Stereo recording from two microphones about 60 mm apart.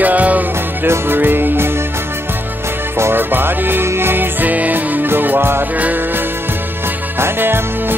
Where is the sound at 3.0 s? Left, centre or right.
Right.